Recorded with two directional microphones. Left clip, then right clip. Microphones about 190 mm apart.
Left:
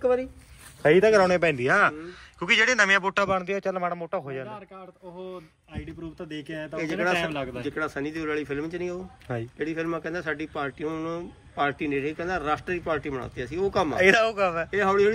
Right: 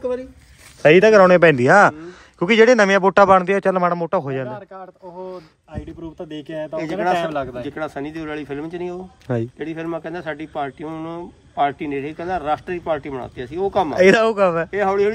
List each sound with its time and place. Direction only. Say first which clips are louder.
0.8 s speech: right 8 dB; 50° right (ahead or behind)
3.3 s speech: right 11 dB; 60° right (ahead or behind)
6.4 s speech: right 6 dB; 40° right (ahead or behind); by 14.7 s 60° right (ahead or behind)
14.7 s speech: right 4 dB; 40° right (ahead or behind)